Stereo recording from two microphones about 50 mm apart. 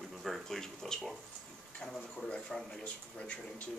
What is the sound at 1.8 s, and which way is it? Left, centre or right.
Speech, left.